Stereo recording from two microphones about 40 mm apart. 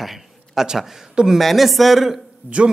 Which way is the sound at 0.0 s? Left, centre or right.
Centre.